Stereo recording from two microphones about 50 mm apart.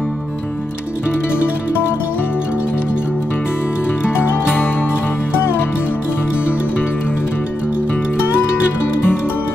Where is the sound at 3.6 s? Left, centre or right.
Left.